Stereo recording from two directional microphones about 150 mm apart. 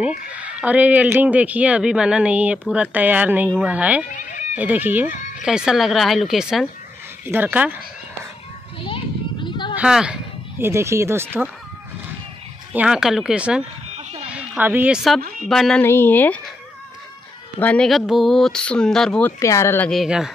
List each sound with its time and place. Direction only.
0.0 s speech: 10° right (ahead or behind)
4.0 s cat: 60° left (ahead or behind)
4.6 s speech: 10° right (ahead or behind)
8.8 s children playing: 35° left (ahead or behind)
9.8 s speech: 5° right (ahead or behind)
10.6 s speech: 20° right (ahead or behind)
12.7 s speech: 5° right (ahead or behind)
13.9 s a sound: 45° right (ahead or behind)
14.3 s speech: 10° right (ahead or behind)
15.8 s speech: 15° left (ahead or behind)
17.6 s speech: 10° left (ahead or behind)
19.4 s speech: 20° left (ahead or behind)
19.9 s speech: centre (ahead or behind)